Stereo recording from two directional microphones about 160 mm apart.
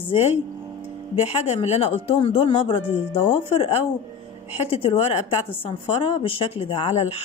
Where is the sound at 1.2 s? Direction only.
40° left (ahead or behind).